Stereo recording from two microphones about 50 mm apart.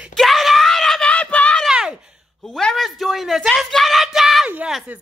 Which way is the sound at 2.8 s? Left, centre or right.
Centre.